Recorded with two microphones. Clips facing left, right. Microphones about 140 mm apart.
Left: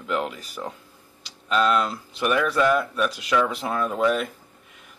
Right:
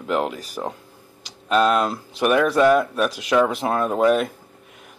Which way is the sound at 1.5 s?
45° right (ahead or behind).